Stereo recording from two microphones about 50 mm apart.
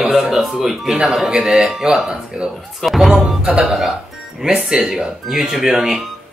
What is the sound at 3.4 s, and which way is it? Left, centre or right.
Speech, centre.